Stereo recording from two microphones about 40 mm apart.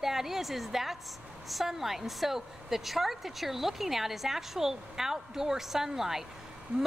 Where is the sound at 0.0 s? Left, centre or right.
Centre.